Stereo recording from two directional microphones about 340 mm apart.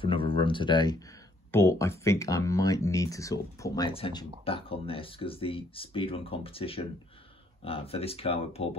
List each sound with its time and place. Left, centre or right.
0.0 s speech: centre